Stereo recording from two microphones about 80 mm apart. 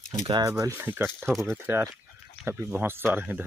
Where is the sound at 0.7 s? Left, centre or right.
Right.